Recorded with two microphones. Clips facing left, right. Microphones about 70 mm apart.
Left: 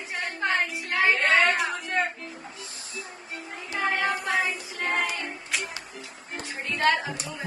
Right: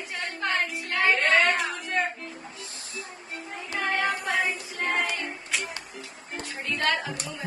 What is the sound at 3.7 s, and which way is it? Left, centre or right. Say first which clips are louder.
Speech: left 1 dB; centre.